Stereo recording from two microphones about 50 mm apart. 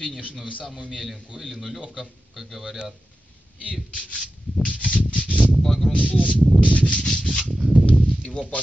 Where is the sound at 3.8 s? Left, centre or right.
Left.